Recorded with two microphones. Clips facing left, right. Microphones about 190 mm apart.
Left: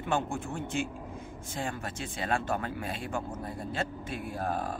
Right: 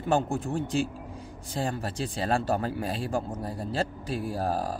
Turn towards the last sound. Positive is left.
turn(degrees=-35)  # may be behind; listen again after turning